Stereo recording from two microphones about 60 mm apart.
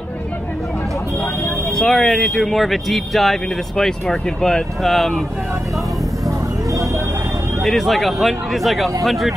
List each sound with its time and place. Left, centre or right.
1.8 s speech: centre
6.2 s vehicle: right
7.6 s speech: centre